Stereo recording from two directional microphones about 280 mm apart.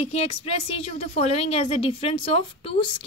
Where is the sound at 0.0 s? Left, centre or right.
Left.